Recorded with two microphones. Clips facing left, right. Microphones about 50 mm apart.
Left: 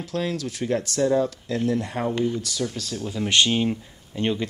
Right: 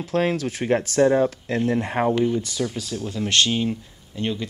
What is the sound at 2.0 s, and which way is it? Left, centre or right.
Speech, right.